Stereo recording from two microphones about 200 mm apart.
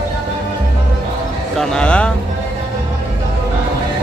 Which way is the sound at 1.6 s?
5° left (ahead or behind).